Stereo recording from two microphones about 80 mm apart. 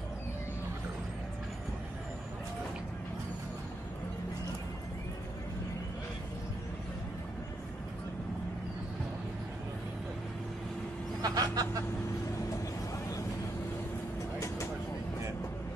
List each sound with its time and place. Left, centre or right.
11.2 s speech: right